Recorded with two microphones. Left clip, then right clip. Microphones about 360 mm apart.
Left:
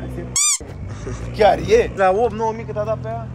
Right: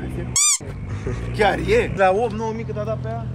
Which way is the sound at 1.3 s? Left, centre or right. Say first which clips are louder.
Left 4 dB; left.